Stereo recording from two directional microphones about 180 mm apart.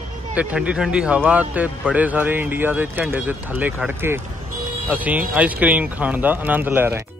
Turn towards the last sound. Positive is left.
turn(degrees=-10)  # may be behind; listen again after turning